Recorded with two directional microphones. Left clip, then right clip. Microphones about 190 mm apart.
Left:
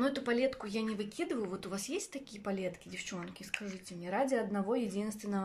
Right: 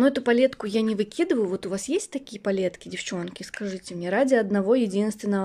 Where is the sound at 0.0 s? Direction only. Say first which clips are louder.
Right 12 dB; 40° right (ahead or behind).